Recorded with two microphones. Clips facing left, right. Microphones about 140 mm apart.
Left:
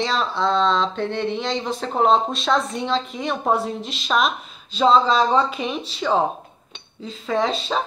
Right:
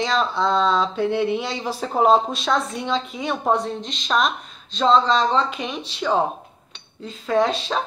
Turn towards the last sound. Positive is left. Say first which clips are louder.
# right 2 dB
turn(degrees=0)  # may be behind; listen again after turning